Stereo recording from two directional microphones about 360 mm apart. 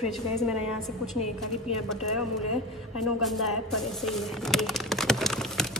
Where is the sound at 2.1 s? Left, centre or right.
Left.